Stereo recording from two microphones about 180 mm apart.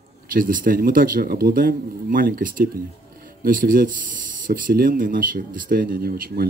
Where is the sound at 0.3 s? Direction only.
50° right (ahead or behind).